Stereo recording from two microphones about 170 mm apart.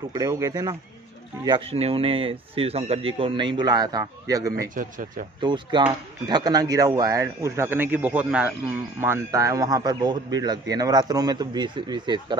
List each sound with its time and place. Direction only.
0.1 s a man's voice: 20° right (ahead or behind)
1.7 s speech: 35° right (ahead or behind); by 4.6 s 20° right (ahead or behind)
4.6 s speech: 50° right (ahead or behind)
5.4 s a man's voice: 25° right (ahead or behind)